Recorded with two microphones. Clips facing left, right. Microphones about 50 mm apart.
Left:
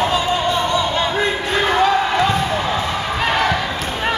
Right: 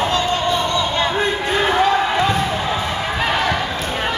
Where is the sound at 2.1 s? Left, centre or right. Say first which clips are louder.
Left 1 dB; centre.